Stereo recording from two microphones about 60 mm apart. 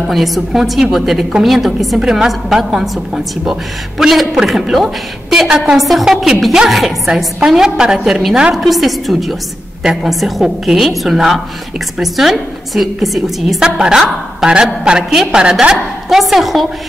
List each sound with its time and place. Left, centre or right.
0.0 s a woman's voice: centre
4.0 s a woman's voice: centre